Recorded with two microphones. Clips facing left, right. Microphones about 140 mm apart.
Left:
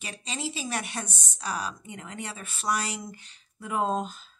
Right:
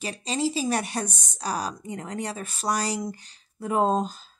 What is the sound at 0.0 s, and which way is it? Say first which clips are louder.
Speech: right 8 dB; 35° right (ahead or behind).